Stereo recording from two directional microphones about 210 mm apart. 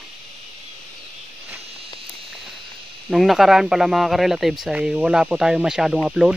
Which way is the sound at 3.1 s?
Centre (ahead or behind).